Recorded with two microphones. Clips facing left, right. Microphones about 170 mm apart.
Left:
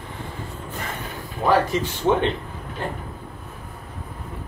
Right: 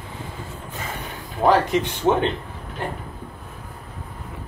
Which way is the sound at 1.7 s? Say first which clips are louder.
Right 1 dB; 20° right (ahead or behind).